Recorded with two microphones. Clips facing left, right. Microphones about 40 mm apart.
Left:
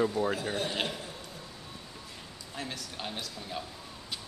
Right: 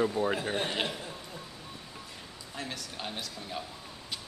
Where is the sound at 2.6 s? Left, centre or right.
Centre.